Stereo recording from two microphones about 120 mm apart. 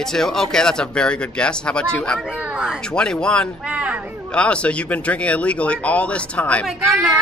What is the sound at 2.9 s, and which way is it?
Speech, 5° left (ahead or behind).